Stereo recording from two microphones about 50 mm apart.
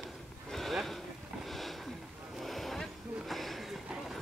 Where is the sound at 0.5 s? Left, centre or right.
Centre.